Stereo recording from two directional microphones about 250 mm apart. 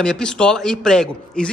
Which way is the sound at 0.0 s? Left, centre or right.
Centre.